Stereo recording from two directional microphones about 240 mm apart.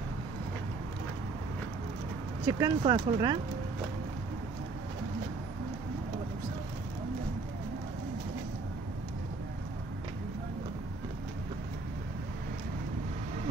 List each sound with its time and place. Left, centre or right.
2.4 s speech: centre